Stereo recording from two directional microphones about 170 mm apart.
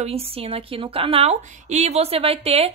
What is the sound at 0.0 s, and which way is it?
A woman's voice, 35° right (ahead or behind).